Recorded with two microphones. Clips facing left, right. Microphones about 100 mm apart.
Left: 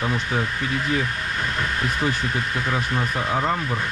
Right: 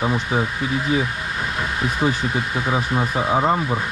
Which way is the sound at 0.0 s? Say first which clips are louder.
Right 3 dB; 20° right (ahead or behind).